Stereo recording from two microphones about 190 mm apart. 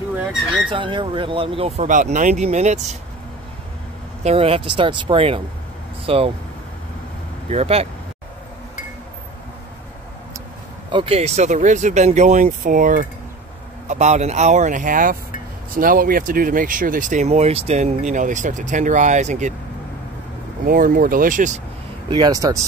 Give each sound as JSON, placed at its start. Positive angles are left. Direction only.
{"t": 0.1, "sound": "speech", "side_deg": -10}
{"t": 0.7, "sound": "speech", "side_deg": -25}
{"t": 1.9, "sound": "speech", "side_deg": -40}
{"t": 4.2, "sound": "speech", "side_deg": -35}
{"t": 7.5, "sound": "speech", "side_deg": -30}
{"t": 10.9, "sound": "speech", "side_deg": -30}
{"t": 20.6, "sound": "speech", "side_deg": -50}
{"t": 22.1, "sound": "speech", "side_deg": -20}